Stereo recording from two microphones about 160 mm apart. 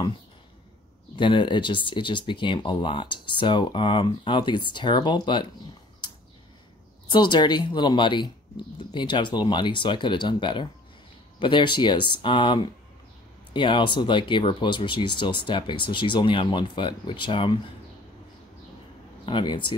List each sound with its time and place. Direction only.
1.1 s speech: 30° left (ahead or behind)
7.1 s speech: 30° left (ahead or behind)
19.2 s speech: 30° left (ahead or behind)